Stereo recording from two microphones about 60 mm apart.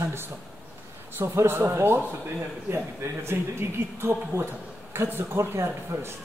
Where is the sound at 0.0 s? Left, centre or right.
Right.